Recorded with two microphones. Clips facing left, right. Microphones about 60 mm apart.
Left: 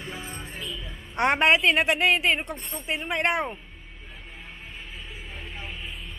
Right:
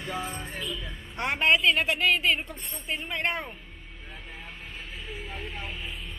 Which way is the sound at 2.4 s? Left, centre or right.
Left.